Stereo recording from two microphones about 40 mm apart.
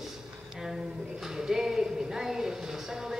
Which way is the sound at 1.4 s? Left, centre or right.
Centre.